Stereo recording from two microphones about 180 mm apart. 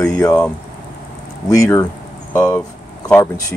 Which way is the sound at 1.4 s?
20° left (ahead or behind).